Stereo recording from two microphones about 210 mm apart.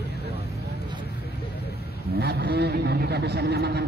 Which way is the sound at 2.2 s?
50° right (ahead or behind).